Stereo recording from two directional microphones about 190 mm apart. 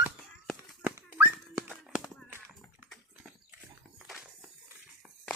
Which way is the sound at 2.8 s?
5° right (ahead or behind).